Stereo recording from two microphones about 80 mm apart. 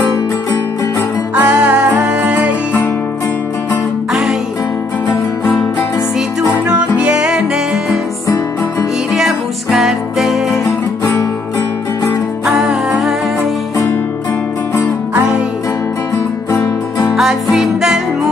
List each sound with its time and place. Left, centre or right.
1.4 s music: right
4.1 s music: centre
6.7 s music: centre
9.1 s music: centre
12.4 s music: centre
17.1 s music: centre